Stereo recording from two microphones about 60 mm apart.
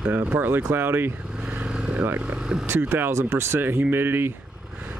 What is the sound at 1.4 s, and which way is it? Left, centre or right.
Vehicle, right.